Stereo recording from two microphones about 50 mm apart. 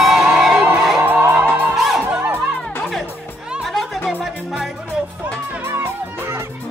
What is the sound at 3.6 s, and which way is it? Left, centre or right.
Music, centre.